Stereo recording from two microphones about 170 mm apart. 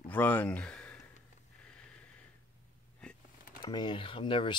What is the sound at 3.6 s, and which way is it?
Speech, 25° left (ahead or behind).